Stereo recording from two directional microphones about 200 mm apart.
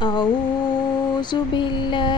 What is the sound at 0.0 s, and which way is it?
Mantra, 20° left (ahead or behind).